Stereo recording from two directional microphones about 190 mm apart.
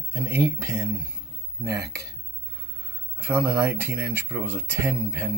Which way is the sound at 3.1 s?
10° right (ahead or behind).